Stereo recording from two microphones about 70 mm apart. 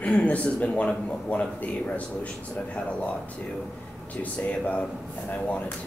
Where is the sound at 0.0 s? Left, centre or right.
Centre.